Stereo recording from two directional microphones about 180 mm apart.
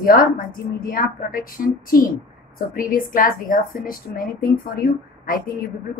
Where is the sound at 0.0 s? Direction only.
55° left (ahead or behind).